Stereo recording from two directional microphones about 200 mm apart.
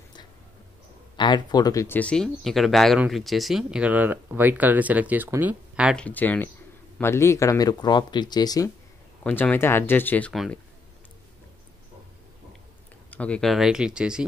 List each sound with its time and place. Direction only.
1.1 s speech: 20° left (ahead or behind); by 5.9 s 5° right (ahead or behind)
5.9 s speech: 10° left (ahead or behind)
9.2 s speech: 10° left (ahead or behind)
13.1 s speech: 5° left (ahead or behind)